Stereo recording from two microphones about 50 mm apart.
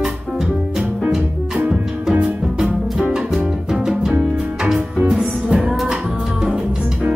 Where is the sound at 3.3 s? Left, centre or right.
Centre.